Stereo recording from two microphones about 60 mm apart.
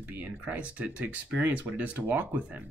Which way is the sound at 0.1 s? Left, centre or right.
Right.